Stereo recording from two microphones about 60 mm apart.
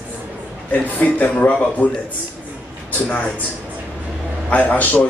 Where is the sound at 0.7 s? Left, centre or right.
Left.